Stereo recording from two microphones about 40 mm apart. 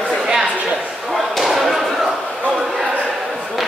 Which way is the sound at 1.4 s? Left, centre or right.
Centre.